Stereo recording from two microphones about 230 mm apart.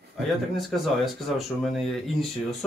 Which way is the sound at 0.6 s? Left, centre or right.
Centre.